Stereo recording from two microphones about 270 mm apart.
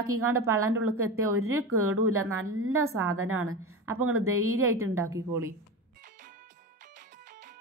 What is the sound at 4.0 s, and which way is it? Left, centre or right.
Speech, right.